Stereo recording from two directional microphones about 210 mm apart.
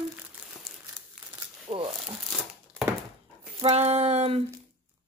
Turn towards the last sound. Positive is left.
turn(degrees=-30)  # may be behind; listen again after turning